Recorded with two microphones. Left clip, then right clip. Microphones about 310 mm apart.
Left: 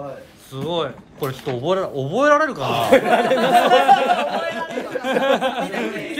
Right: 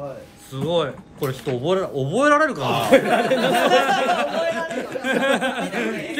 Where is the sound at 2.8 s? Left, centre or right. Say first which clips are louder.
Left 2 dB; left.